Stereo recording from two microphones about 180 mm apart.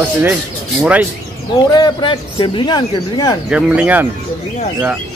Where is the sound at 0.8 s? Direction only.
5° right (ahead or behind).